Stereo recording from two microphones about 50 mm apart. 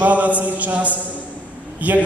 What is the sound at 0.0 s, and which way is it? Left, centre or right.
A man's voice, right.